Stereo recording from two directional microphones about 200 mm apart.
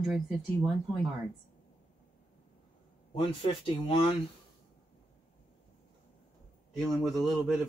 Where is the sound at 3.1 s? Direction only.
25° left (ahead or behind).